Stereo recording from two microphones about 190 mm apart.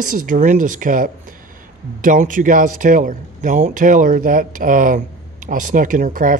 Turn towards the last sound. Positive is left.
turn(degrees=-45)  # may be behind; listen again after turning